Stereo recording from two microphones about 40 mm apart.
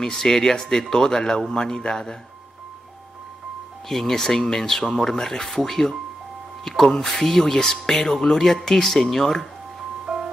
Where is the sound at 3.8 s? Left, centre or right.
Centre.